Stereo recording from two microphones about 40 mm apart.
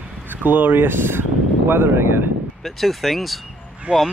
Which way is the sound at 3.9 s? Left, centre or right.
Right.